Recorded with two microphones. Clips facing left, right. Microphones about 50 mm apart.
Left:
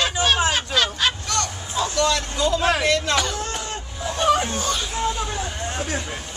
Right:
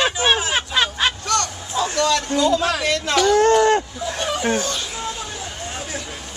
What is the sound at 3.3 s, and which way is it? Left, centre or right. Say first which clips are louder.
Speech: right 15 dB; right.